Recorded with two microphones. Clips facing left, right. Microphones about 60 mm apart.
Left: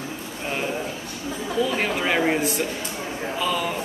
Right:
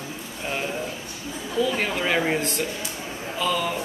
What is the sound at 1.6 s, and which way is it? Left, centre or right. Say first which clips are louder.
Speech: even; centre.